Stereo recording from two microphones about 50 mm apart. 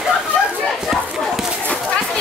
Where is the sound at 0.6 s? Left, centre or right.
Centre.